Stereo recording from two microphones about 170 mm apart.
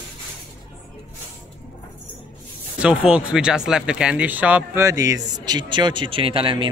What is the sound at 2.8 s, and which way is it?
A man's voice, 5° right (ahead or behind).